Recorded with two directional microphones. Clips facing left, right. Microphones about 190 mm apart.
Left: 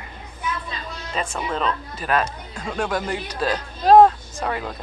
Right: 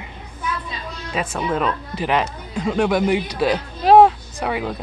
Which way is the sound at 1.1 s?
5° right (ahead or behind).